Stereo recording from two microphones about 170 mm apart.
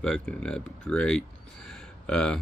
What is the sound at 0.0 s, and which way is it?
Speech, 5° left (ahead or behind).